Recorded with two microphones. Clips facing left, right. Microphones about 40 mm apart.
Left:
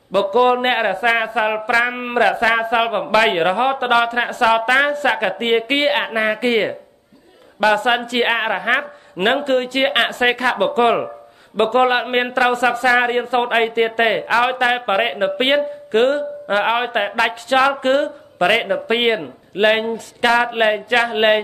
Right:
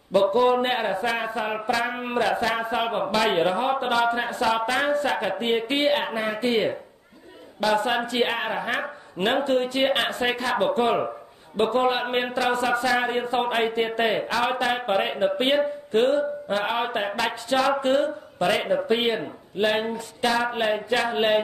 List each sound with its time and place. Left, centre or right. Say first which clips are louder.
0.1 s a woman's voice: left 4 dB; left
7.6 s speech: left 7 dB; left